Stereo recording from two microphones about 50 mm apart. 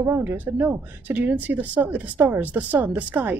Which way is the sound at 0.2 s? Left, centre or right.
Right.